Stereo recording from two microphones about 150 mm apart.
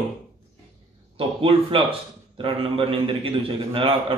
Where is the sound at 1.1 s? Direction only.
35° right (ahead or behind).